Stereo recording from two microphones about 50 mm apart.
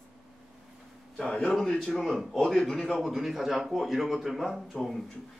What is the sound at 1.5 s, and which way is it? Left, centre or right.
Speech, centre.